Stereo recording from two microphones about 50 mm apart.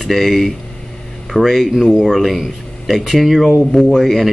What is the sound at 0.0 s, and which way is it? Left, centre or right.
Speech, centre.